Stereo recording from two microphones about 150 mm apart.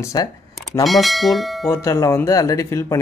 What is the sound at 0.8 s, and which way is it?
Speech, centre (ahead or behind).